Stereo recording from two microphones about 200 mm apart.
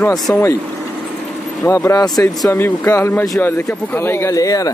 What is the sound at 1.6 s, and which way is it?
Speech, 15° left (ahead or behind).